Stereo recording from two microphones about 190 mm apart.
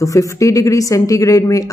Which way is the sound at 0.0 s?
15° left (ahead or behind).